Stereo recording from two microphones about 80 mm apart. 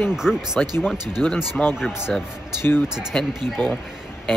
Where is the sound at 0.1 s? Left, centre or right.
Centre.